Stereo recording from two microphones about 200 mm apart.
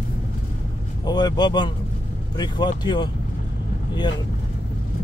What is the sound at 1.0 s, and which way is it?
Speech, 20° left (ahead or behind).